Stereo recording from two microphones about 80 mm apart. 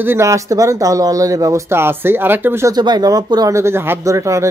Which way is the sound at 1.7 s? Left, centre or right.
Right.